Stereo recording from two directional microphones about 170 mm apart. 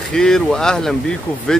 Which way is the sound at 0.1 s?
5° left (ahead or behind).